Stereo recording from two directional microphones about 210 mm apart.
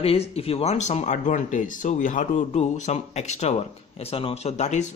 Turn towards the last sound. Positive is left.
turn(degrees=35)  # may be behind; listen again after turning